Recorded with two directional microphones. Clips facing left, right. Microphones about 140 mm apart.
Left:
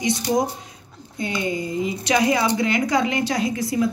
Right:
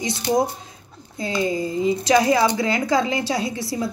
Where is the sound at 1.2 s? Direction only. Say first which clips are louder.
Right 2 dB; 30° right (ahead or behind).